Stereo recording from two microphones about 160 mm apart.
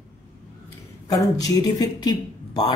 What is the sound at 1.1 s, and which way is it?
Speech, 25° left (ahead or behind).